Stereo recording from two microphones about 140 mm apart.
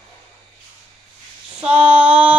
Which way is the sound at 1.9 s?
10° right (ahead or behind).